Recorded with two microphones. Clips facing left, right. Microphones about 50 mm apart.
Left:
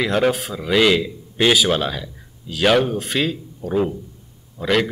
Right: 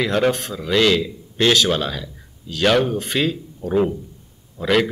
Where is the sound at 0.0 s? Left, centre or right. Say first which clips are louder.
Even; centre.